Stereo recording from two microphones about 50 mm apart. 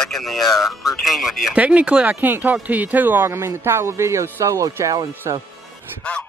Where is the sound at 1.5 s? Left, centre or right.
Right.